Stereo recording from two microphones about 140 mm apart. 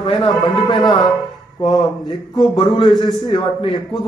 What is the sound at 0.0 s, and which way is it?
Speech, 30° left (ahead or behind).